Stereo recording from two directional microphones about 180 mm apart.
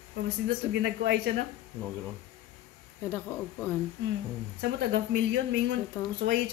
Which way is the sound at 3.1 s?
10° left (ahead or behind).